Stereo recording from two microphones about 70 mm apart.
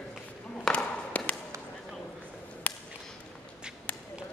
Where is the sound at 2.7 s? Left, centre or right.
Centre.